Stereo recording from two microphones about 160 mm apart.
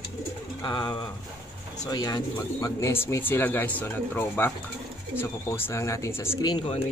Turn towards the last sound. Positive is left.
turn(degrees=30)  # may be behind; listen again after turning